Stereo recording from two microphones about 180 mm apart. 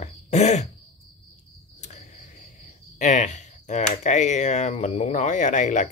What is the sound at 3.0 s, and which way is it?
Speech, 40° left (ahead or behind).